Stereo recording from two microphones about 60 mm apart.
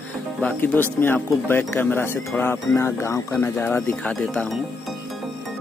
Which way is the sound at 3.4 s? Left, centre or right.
Left.